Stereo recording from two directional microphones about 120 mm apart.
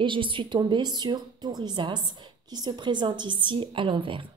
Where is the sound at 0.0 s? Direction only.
45° right (ahead or behind).